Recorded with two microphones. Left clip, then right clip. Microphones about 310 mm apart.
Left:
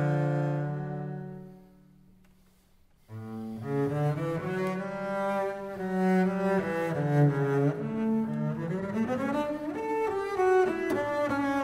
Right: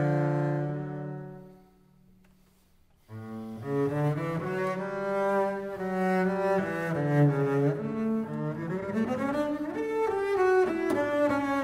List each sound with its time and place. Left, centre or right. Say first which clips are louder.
0.0 s music: right 2 dB; right
3.2 s cello: even; right